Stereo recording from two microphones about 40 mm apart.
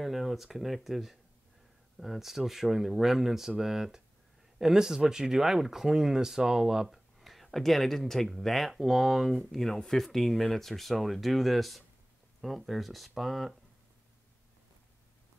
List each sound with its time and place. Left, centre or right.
0.0 s speech: centre
7.2 s speech: centre